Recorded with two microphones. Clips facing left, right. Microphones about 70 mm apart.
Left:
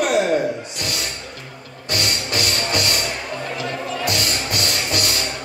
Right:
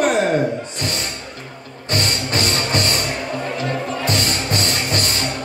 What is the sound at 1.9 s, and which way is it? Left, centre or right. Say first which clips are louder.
Music: right 2 dB; right.